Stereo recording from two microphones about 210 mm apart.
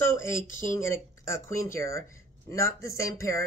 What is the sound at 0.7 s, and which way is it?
A woman's voice, 15° left (ahead or behind).